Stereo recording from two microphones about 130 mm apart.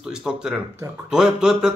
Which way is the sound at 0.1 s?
5° right (ahead or behind).